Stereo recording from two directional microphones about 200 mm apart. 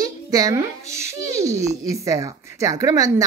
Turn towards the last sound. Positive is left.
turn(degrees=-15)  # may be behind; listen again after turning